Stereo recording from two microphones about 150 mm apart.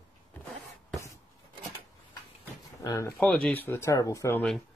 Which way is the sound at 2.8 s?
20° left (ahead or behind).